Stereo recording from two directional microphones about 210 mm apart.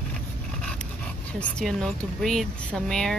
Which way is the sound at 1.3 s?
Centre (ahead or behind).